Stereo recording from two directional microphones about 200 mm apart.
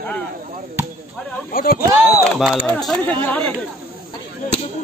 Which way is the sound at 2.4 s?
Centre (ahead or behind).